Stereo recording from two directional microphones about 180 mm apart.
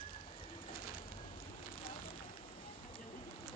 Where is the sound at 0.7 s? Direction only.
55° left (ahead or behind).